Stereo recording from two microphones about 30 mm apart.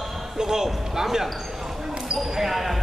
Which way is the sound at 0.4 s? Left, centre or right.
Centre.